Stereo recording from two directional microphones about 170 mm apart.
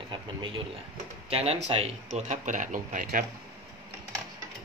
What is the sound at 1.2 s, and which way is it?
Speech, 35° right (ahead or behind).